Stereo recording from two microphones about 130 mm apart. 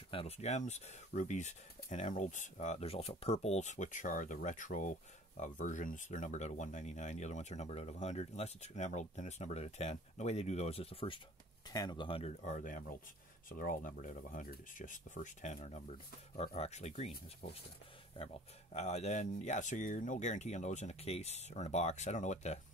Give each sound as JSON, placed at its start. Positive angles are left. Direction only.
{"t": 0.1, "sound": "speech", "side_deg": 50}
{"t": 11.7, "sound": "speech", "side_deg": 30}
{"t": 16.3, "sound": "speech", "side_deg": 55}